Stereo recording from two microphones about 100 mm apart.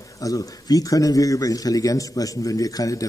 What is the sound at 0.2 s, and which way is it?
A man's voice, 35° left (ahead or behind).